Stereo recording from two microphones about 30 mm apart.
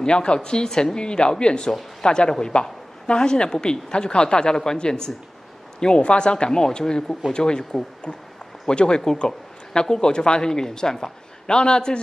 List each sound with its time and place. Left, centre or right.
0.0 s speech: left
2.5 s speech: left
3.2 s speech: left